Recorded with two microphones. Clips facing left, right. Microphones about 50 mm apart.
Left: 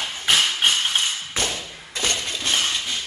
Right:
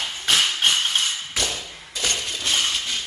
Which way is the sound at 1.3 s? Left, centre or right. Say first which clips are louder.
Left 1 dB; left.